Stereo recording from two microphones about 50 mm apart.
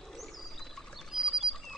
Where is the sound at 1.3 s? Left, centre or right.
Centre.